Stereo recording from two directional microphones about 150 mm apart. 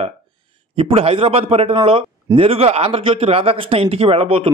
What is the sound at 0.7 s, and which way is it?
A man's voice, 40° right (ahead or behind).